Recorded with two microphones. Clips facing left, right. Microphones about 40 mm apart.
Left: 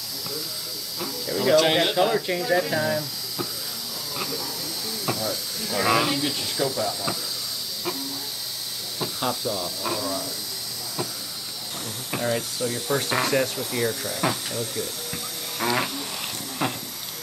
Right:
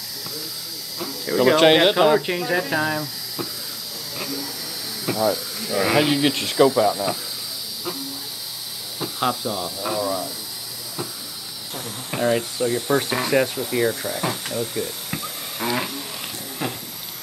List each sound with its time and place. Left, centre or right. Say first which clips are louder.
1.2 s speech: right 7 dB; centre
1.5 s speech: right 4 dB; right
4.2 s hiss: right 2 dB; centre
5.0 s speech: right 8 dB; centre
5.9 s speech: right 4 dB; right
6.2 s speech: right 6 dB; right
6.7 s speech: right 8 dB; right
9.3 s speech: right 2 dB; centre
12.2 s speech: right 6 dB; centre
15.6 s snoring: even; centre
16.6 s a sound: left 1 dB; centre